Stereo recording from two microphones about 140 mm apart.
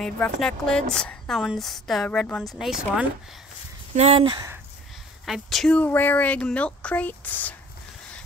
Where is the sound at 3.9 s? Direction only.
45° right (ahead or behind).